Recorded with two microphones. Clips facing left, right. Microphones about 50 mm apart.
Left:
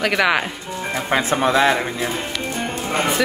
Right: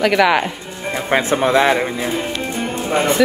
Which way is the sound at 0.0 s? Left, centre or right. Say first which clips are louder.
Right 4 dB; centre.